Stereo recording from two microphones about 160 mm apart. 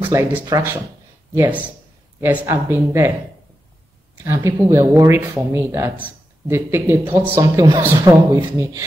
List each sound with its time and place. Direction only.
0.0 s speech: 15° right (ahead or behind)
2.1 s speech: 10° right (ahead or behind)
4.2 s speech: 20° right (ahead or behind)